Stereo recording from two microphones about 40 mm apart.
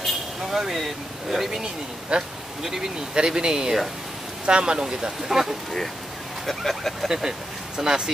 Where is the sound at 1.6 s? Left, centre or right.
Right.